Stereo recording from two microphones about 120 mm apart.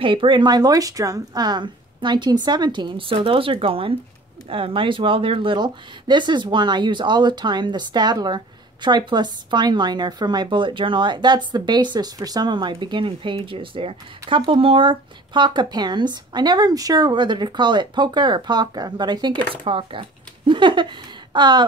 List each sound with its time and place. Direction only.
0.0 s speech: 45° right (ahead or behind)